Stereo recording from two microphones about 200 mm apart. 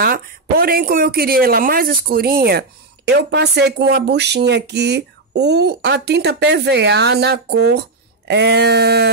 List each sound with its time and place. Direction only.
0.0 s speech: 50° right (ahead or behind)